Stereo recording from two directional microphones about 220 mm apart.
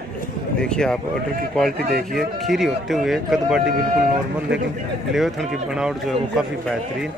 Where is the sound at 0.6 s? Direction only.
5° left (ahead or behind).